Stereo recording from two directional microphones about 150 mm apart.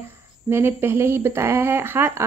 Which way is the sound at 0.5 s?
15° right (ahead or behind).